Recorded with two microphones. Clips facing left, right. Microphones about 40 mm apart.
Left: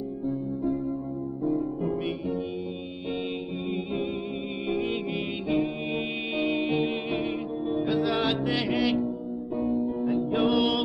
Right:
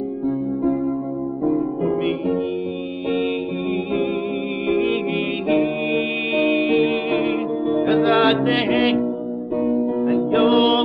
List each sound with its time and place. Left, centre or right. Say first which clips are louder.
1.4 s music: right 7 dB; right
4.6 s music: right 9 dB; right